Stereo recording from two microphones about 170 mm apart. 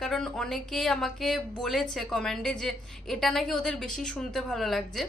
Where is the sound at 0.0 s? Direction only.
5° left (ahead or behind).